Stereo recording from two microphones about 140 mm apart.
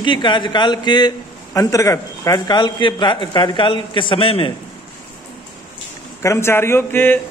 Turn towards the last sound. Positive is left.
turn(degrees=15)  # may be behind; listen again after turning